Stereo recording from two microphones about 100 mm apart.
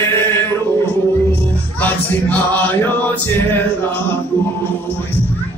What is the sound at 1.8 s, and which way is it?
Music, 15° left (ahead or behind).